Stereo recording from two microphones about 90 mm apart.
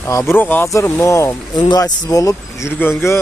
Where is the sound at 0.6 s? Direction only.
35° left (ahead or behind).